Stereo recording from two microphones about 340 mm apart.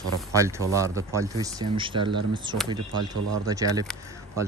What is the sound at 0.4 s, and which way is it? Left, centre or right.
A man's voice, centre.